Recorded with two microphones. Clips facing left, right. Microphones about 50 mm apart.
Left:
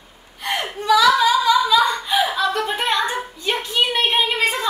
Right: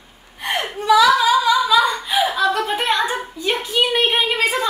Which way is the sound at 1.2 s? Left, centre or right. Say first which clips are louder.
Even; centre.